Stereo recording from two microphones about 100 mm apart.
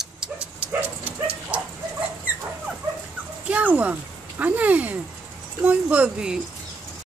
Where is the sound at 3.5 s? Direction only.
15° right (ahead or behind).